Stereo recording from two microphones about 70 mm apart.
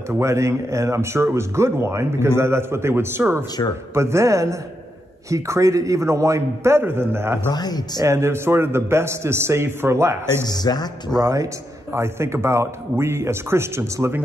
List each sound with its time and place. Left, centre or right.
0.2 s a man's voice: right
6.8 s speech: right
7.5 s speech: left
8.0 s speech: right
10.4 s speech: left
11.2 s speech: right